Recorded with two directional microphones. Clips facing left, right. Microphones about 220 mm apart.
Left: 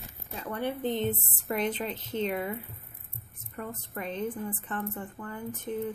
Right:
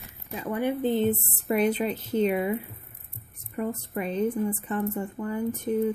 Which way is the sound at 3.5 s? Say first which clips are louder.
Right 8 dB; 10° right (ahead or behind).